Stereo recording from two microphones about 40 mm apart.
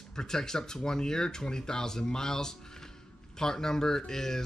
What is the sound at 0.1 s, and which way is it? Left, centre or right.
Speech, centre.